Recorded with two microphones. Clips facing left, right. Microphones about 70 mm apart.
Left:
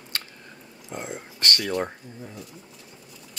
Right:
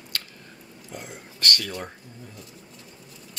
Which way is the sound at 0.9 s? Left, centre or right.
Left.